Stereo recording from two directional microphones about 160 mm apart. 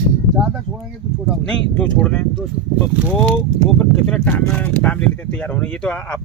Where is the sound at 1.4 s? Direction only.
5° left (ahead or behind).